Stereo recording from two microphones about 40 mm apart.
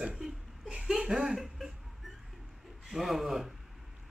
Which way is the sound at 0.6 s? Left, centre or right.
Right.